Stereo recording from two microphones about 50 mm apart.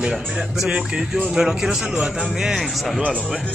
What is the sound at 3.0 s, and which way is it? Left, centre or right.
Speech, right.